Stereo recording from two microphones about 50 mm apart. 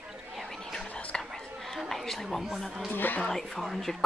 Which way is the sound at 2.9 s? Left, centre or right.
Left.